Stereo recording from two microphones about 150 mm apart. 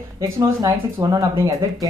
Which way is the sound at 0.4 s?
20° right (ahead or behind).